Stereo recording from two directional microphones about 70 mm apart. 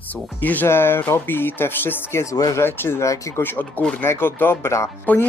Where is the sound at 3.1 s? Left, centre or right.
Left.